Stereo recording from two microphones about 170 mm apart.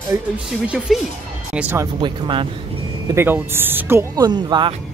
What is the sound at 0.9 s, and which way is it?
Speech, centre (ahead or behind).